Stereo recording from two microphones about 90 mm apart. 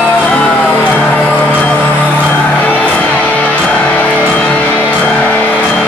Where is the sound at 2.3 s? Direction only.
15° left (ahead or behind).